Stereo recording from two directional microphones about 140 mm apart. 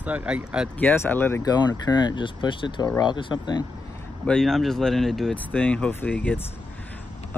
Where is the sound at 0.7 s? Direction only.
15° left (ahead or behind).